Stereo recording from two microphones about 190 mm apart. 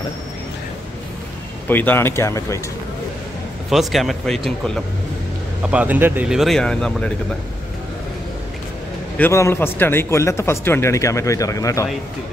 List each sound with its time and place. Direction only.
1.7 s speech: 10° left (ahead or behind)
3.7 s speech: centre (ahead or behind)
9.2 s speech: 15° left (ahead or behind)